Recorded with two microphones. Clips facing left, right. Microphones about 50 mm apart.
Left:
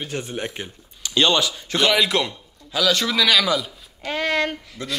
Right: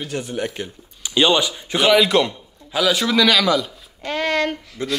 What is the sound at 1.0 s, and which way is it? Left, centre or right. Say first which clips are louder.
Speech: right 2 dB; centre.